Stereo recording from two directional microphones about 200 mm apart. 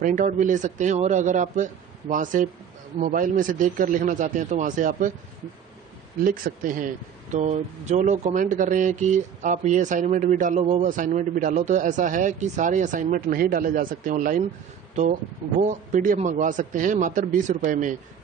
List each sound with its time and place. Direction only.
0.0 s speech: 40° right (ahead or behind)
6.2 s speech: 45° right (ahead or behind)
15.6 s speech: 40° right (ahead or behind)